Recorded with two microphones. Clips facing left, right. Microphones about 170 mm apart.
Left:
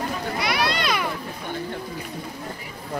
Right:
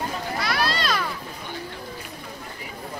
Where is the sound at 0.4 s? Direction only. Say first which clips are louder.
Left 1 dB; 15° left (ahead or behind).